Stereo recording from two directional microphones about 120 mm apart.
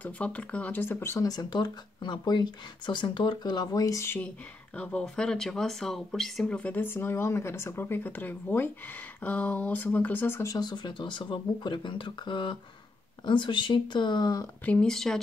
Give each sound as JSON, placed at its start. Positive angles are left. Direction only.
{"t": 0.0, "sound": "speech", "side_deg": 10}
{"t": 4.7, "sound": "speech", "side_deg": 10}
{"t": 14.6, "sound": "speech", "side_deg": 10}